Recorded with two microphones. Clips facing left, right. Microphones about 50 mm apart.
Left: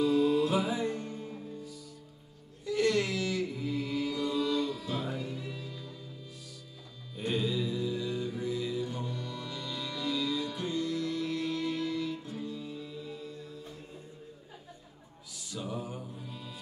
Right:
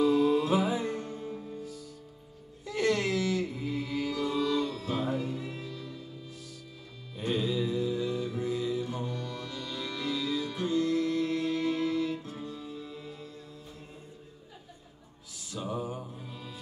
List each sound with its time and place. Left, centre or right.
0.0 s music: right
2.6 s music: right
4.0 s music: right
7.2 s music: centre
7.8 s music: right
8.7 s music: centre
9.0 s music: right
10.0 s music: centre
15.6 s mantra: centre